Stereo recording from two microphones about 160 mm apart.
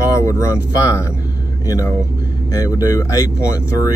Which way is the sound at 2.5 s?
20° left (ahead or behind).